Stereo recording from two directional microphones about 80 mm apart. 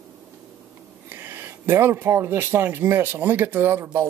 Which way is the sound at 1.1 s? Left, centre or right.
Right.